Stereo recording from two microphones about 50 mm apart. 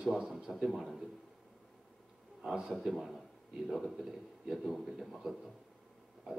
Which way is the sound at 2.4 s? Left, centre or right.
Centre.